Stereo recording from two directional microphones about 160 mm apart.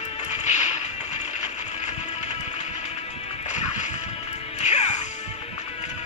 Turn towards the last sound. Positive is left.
turn(degrees=45)  # may be behind; listen again after turning